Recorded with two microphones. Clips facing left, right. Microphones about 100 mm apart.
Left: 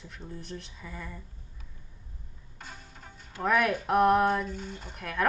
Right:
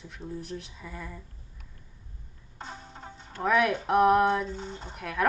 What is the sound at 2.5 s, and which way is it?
Music, 25° right (ahead or behind).